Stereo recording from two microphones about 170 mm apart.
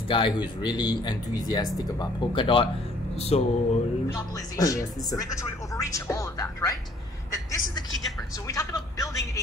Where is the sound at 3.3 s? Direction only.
40° left (ahead or behind).